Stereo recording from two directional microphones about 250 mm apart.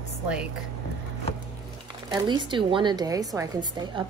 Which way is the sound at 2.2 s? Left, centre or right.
Centre.